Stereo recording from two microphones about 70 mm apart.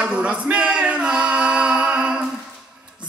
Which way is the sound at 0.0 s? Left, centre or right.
Centre.